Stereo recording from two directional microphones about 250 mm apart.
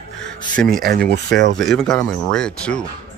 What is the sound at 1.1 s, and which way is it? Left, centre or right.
Speech, right.